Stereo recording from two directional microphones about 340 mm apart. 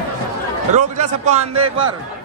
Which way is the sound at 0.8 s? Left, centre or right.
Centre.